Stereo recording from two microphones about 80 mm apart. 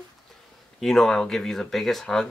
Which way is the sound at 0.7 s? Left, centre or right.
Centre.